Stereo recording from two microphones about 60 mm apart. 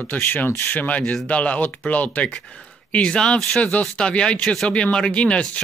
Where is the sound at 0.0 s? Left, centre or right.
Left.